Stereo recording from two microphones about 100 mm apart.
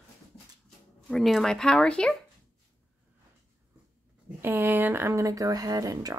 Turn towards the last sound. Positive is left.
turn(degrees=-35)  # may be behind; listen again after turning